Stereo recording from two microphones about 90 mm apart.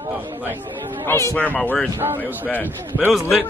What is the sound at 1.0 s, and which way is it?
Speech, 30° left (ahead or behind).